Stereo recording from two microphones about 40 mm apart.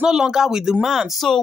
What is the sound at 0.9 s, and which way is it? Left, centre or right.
Speech, centre.